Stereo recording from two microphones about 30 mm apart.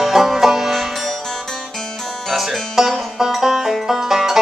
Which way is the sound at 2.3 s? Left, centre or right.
Centre.